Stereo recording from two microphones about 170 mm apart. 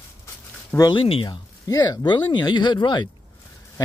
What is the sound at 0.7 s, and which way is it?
Speech, 20° left (ahead or behind).